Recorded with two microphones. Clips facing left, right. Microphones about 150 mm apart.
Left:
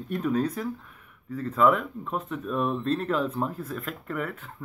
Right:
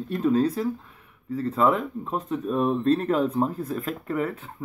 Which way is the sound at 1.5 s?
35° right (ahead or behind).